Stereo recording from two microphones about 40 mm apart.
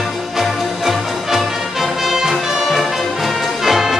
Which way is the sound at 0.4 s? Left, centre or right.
Centre.